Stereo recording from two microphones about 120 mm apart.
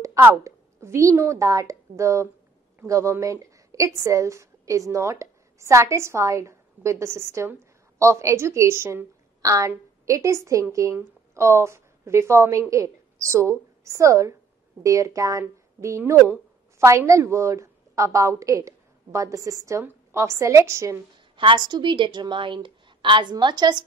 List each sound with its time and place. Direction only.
0.0 s a woman's voice: 25° right (ahead or behind)
21.4 s a woman's voice: 40° right (ahead or behind)